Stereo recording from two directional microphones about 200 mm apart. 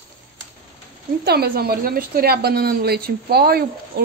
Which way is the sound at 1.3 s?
50° right (ahead or behind).